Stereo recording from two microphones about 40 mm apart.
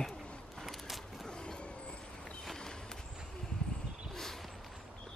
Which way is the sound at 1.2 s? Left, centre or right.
Left.